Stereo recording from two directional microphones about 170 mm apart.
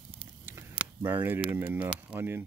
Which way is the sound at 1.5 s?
10° right (ahead or behind).